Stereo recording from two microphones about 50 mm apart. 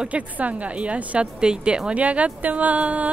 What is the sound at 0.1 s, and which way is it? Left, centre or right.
A woman's voice, right.